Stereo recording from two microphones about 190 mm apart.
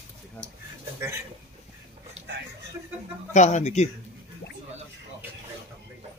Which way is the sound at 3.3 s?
40° left (ahead or behind).